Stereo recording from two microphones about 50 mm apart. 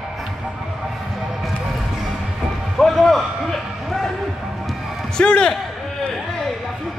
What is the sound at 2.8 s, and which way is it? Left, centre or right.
Music, centre.